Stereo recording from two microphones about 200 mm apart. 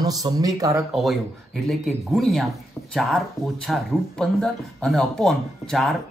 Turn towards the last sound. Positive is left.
turn(degrees=0)  # may be behind; listen again after turning